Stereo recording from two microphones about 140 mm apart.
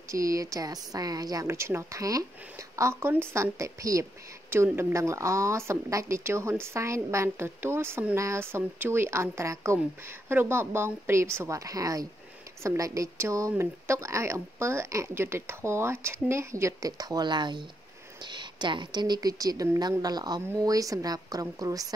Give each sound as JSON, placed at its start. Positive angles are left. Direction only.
{"t": 0.1, "sound": "a woman's voice", "side_deg": -25}